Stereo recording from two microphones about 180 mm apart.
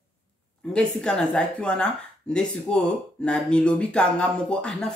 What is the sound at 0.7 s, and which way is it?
Speech, 5° left (ahead or behind).